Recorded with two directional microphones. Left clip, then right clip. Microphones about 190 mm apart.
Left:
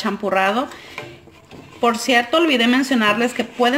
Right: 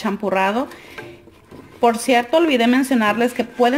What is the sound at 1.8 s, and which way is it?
Speech, 20° right (ahead or behind).